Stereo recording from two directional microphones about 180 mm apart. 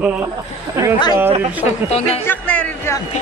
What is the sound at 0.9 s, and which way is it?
Speech, 25° left (ahead or behind).